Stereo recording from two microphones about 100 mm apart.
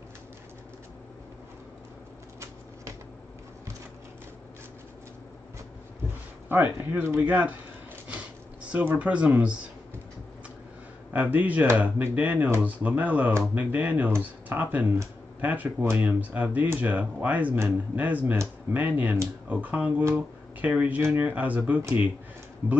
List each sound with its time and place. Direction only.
6.5 s speech: 20° right (ahead or behind)
8.7 s speech: 15° right (ahead or behind)
11.1 s speech: 15° right (ahead or behind)